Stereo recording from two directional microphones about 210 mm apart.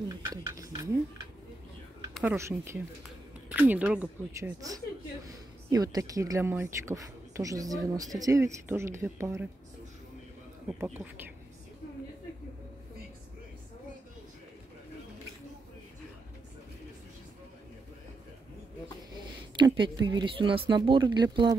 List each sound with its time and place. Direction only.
0.3 s a sound: 15° right (ahead or behind)
2.1 s speech: 10° right (ahead or behind)
19.6 s speech: 20° right (ahead or behind)